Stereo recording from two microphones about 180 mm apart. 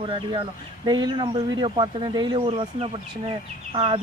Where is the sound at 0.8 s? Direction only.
25° right (ahead or behind).